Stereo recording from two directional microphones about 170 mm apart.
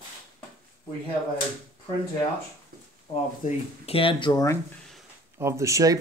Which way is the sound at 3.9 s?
30° left (ahead or behind).